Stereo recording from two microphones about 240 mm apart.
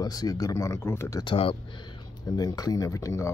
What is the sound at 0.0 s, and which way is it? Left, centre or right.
Speech, centre.